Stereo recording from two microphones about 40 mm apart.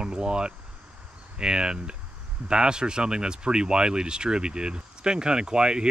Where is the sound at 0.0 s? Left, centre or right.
Right.